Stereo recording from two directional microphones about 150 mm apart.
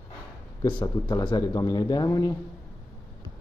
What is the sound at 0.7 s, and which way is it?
A man's voice, 30° left (ahead or behind).